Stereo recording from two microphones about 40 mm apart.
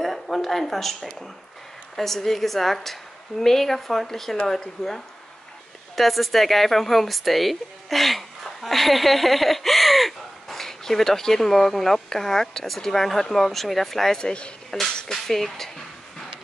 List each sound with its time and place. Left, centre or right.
0.0 s speech: centre
5.9 s speech: centre
14.1 s speech: left
15.0 s speech: centre